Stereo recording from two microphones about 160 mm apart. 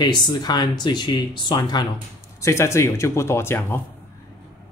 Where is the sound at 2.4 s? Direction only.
15° left (ahead or behind).